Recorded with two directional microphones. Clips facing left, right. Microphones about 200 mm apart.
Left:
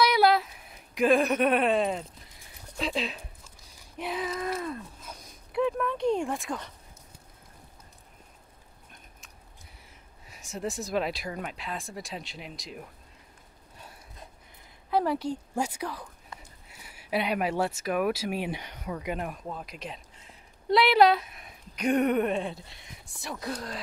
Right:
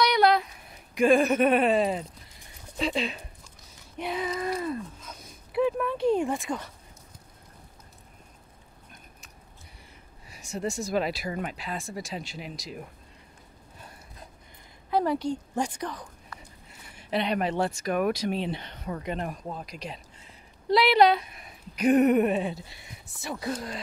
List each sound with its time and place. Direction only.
0.0 s a sound: 5° left (ahead or behind)
4.0 s speech: centre (ahead or behind)
10.2 s speech: centre (ahead or behind)
14.9 s speech: centre (ahead or behind)
16.3 s a sound: 25° left (ahead or behind)
16.8 s speech: 5° left (ahead or behind)